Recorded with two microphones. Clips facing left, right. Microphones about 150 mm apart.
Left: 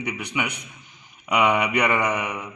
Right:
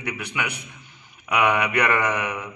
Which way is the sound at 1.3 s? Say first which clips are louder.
Left 1 dB; 20° left (ahead or behind).